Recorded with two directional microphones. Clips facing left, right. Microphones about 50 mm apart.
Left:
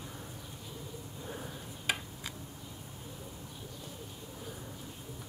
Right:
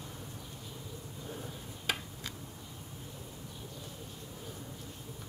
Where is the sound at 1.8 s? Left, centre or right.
Centre.